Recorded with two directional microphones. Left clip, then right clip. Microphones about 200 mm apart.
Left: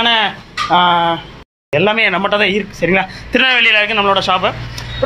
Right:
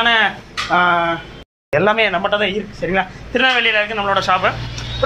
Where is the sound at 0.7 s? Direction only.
35° left (ahead or behind).